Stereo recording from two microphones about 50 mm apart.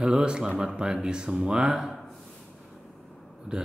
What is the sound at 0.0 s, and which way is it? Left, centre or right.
A man's voice, centre.